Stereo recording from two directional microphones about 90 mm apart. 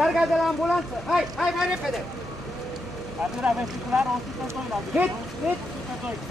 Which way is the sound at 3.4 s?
10° right (ahead or behind).